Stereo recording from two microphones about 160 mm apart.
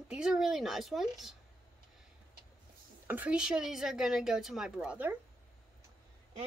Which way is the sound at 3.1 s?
10° right (ahead or behind).